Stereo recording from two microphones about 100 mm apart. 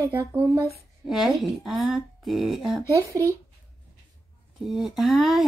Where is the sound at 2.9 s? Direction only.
30° right (ahead or behind).